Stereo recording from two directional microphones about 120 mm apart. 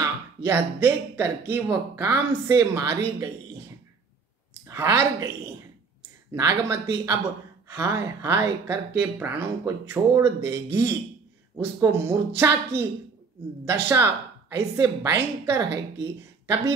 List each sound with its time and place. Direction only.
0.0 s a woman's voice: 20° right (ahead or behind)
4.6 s a woman's voice: 25° right (ahead or behind)
6.3 s a woman's voice: 25° right (ahead or behind)